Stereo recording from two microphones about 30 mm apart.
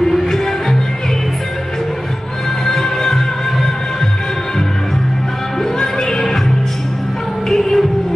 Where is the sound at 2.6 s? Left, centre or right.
Centre.